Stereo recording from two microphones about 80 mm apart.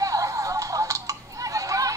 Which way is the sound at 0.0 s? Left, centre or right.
Right.